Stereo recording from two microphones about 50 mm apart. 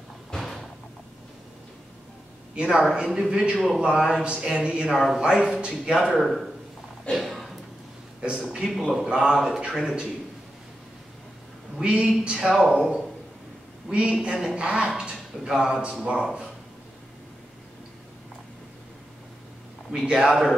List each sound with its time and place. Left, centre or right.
0.3 s door: centre
2.5 s speech: centre
2.8 s speech: centre
3.5 s a man's voice: centre
3.8 s speech: centre
4.8 s a man's voice: centre
5.2 s speech: centre
6.1 s a man's voice: centre
7.1 s a sound: centre
8.2 s speech: right
8.6 s a man's voice: centre
11.8 s speech: centre
20.1 s speech: centre